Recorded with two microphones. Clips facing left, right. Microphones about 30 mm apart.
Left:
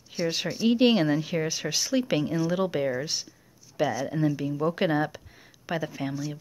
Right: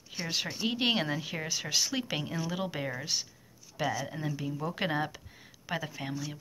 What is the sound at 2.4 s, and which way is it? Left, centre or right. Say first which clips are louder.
Speech: left 8 dB; centre.